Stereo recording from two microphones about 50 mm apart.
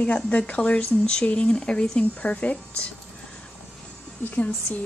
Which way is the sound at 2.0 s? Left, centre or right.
Left.